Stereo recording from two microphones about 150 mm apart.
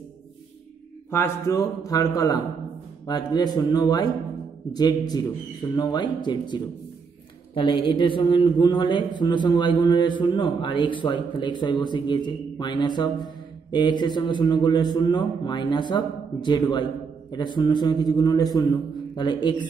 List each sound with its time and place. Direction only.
1.1 s a man's voice: 20° left (ahead or behind)